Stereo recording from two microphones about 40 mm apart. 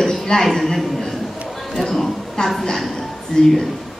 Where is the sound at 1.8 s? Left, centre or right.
Centre.